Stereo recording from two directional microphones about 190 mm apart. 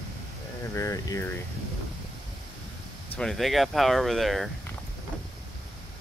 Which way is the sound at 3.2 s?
Centre (ahead or behind).